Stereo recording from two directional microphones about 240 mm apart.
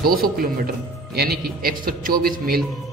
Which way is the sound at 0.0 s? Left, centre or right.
Right.